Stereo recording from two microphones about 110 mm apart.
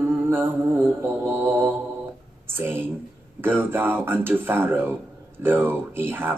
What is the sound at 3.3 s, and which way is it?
Mantra, 20° right (ahead or behind).